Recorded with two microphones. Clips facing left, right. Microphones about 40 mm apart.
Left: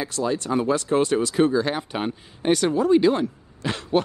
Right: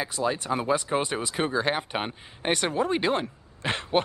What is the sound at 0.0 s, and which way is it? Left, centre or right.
Speech, centre.